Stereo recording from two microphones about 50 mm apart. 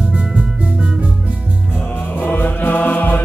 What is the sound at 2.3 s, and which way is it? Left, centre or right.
Chant, left.